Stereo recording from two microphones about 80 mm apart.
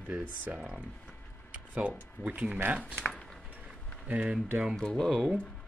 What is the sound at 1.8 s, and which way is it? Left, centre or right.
Speech, centre.